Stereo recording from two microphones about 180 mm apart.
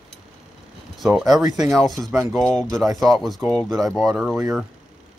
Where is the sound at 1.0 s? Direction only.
Centre (ahead or behind).